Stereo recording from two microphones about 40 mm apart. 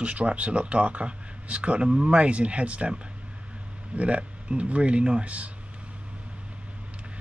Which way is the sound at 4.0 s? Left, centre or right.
Right.